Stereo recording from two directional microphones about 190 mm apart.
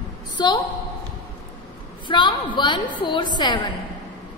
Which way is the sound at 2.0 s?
25° left (ahead or behind).